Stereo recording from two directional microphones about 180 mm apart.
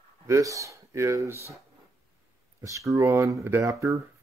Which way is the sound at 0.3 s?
15° right (ahead or behind).